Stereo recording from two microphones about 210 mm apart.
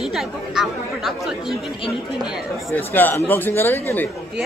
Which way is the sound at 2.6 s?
10° left (ahead or behind).